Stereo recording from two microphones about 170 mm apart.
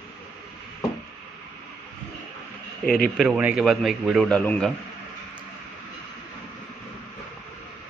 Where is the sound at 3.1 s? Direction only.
5° right (ahead or behind).